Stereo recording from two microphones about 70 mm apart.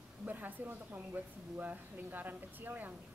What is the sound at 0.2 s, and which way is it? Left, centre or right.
Speech, right.